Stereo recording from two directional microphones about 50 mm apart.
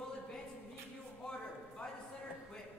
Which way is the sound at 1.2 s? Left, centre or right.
Centre.